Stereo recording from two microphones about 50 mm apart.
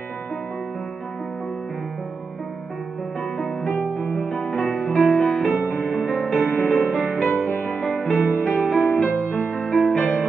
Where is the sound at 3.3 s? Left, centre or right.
Centre.